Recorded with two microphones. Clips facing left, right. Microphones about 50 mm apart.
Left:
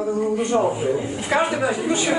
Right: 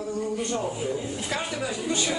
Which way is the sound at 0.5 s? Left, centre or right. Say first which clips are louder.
Left 13 dB; left.